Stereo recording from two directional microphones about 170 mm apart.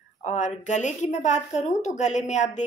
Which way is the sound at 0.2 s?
45° left (ahead or behind).